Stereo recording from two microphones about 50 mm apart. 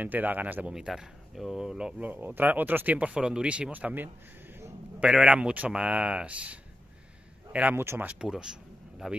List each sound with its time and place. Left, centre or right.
0.0 s speech: right
0.7 s speech: centre
2.0 s speech: right
3.2 s speech: centre
3.7 s speech: right
5.0 s speech: centre
7.7 s speech: right
8.2 s speech: centre